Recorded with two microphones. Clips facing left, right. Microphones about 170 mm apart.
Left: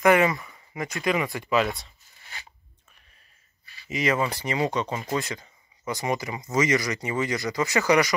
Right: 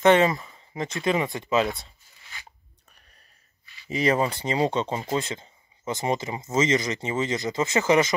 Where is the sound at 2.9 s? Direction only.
40° right (ahead or behind).